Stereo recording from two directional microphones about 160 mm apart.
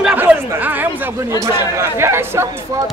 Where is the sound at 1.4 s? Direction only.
15° right (ahead or behind).